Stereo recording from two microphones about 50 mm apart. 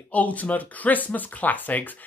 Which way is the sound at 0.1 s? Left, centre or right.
Left.